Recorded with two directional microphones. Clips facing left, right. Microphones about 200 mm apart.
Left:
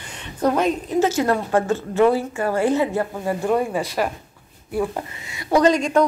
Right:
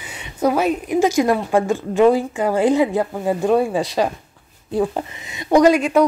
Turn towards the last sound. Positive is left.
turn(degrees=-10)  # may be behind; listen again after turning